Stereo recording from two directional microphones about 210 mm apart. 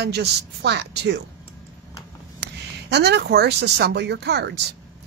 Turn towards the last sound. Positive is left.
turn(degrees=-50)  # may be behind; listen again after turning